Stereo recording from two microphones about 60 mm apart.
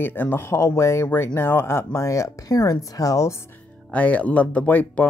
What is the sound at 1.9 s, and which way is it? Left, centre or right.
Speech, left.